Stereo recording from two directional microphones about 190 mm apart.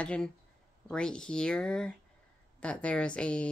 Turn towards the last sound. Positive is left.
turn(degrees=5)  # may be behind; listen again after turning